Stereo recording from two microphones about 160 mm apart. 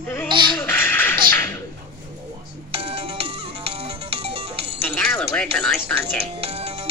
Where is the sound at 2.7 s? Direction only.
35° right (ahead or behind).